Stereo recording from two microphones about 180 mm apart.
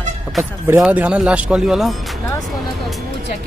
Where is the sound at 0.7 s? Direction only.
10° right (ahead or behind).